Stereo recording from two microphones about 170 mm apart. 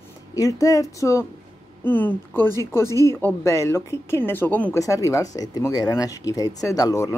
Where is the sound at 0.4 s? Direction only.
20° left (ahead or behind).